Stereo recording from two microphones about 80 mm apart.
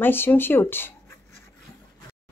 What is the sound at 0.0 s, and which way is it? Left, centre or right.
Speech, left.